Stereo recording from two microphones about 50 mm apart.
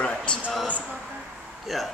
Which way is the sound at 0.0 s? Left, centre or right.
Left.